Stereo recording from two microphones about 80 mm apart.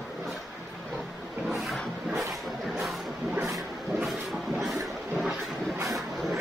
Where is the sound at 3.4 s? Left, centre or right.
Centre.